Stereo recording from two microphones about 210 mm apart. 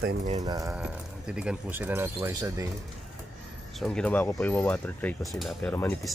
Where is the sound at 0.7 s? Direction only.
5° right (ahead or behind).